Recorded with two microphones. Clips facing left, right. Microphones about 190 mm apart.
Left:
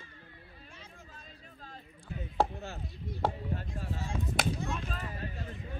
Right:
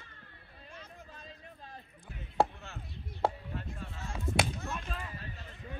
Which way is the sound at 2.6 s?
35° left (ahead or behind).